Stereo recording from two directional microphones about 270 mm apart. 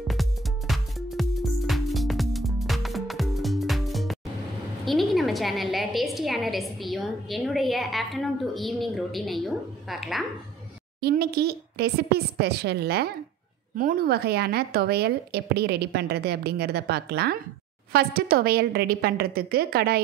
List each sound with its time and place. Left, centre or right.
0.1 s music: centre
4.8 s a woman's voice: centre
11.0 s a woman's voice: right